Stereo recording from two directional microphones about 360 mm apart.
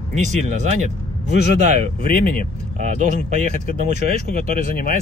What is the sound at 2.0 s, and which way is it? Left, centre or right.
Speech, left.